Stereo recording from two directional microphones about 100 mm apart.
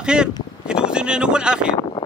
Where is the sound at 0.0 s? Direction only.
10° right (ahead or behind).